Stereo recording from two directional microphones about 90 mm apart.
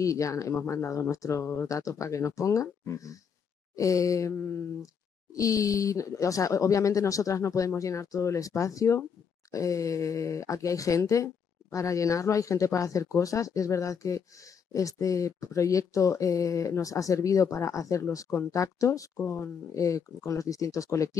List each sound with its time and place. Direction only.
0.0 s speech: 35° left (ahead or behind)